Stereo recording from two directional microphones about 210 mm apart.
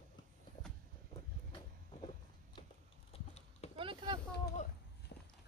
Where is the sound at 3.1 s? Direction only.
30° left (ahead or behind).